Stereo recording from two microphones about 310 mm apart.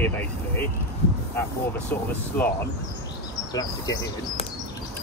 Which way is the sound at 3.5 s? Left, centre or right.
Centre.